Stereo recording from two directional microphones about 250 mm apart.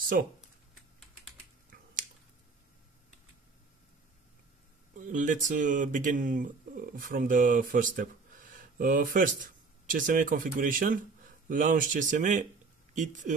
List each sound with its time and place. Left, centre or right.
0.1 s speech: right
1.7 s a sound: right
4.9 s speech: right